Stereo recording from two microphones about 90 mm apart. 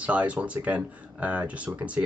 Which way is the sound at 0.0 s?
15° right (ahead or behind).